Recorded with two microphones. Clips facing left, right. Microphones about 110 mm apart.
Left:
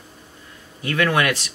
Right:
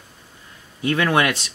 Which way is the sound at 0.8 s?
25° right (ahead or behind).